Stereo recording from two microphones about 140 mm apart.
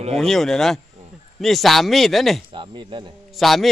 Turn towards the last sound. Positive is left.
turn(degrees=0)  # may be behind; listen again after turning